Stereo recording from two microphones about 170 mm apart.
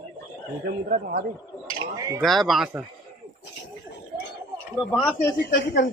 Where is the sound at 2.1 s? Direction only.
Centre (ahead or behind).